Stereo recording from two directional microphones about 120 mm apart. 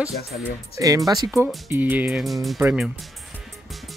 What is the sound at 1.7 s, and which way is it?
Speech, 15° right (ahead or behind).